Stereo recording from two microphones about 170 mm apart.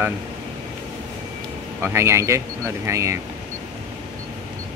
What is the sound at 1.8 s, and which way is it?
Speech, 15° right (ahead or behind).